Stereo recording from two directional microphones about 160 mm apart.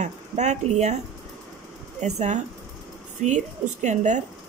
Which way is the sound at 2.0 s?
45° right (ahead or behind).